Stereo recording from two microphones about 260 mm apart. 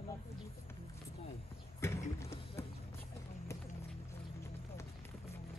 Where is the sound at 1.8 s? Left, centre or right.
Centre.